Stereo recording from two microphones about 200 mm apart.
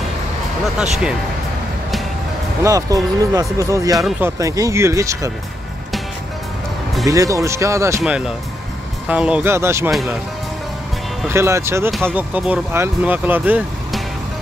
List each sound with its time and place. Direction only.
2.6 s speech: 15° right (ahead or behind)
3.9 s speech: centre (ahead or behind)
4.4 s speech: 15° right (ahead or behind)
7.1 s speech: 15° right (ahead or behind)
9.1 s speech: 5° right (ahead or behind)
11.2 s speech: 15° right (ahead or behind)